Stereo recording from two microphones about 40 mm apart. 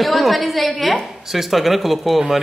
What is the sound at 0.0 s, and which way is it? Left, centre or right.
A woman's voice, centre.